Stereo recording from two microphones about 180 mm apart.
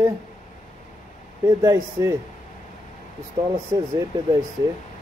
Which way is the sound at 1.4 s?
15° right (ahead or behind).